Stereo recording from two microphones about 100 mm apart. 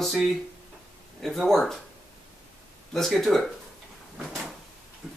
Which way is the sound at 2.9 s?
Centre (ahead or behind).